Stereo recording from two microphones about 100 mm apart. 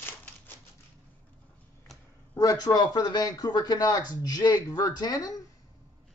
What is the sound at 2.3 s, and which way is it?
Speech, 40° left (ahead or behind).